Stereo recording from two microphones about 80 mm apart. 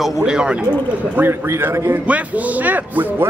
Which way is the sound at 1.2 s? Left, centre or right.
Right.